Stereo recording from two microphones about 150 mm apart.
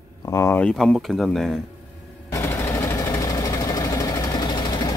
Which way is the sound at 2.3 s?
20° left (ahead or behind).